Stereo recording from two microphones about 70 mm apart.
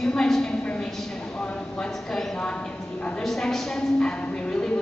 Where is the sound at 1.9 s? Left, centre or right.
Centre.